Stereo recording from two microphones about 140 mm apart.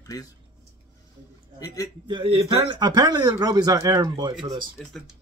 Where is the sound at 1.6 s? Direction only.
25° left (ahead or behind).